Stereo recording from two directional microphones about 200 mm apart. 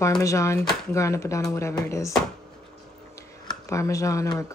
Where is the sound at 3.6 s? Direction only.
15° left (ahead or behind).